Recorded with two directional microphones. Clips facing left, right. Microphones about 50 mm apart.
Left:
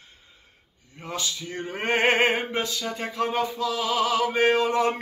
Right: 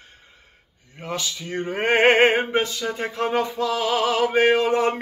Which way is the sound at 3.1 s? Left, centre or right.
Right.